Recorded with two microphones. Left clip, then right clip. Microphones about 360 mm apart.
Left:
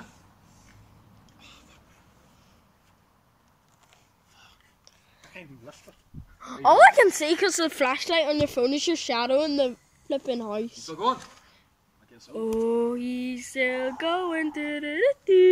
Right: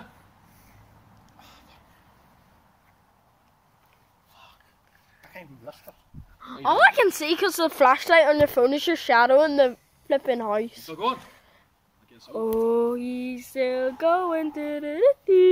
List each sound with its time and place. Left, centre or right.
1.2 s a sound: centre
5.2 s speech: centre
6.4 s speech: centre; by 10.9 s right
10.9 s speech: centre
12.5 s speech: centre